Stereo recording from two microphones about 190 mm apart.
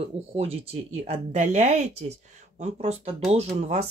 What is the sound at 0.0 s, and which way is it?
Speech, 30° right (ahead or behind).